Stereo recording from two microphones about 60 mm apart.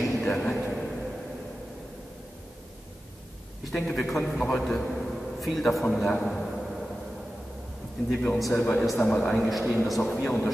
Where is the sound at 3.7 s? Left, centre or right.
Centre.